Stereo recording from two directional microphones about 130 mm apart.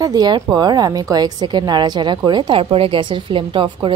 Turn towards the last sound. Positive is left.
turn(degrees=-40)  # may be behind; listen again after turning